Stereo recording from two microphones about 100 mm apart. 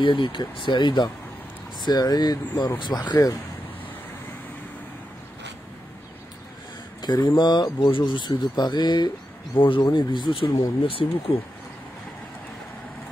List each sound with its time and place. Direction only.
0.0 s speech: 55° left (ahead or behind)
7.2 s speech: 45° left (ahead or behind)
9.6 s speech: 60° left (ahead or behind)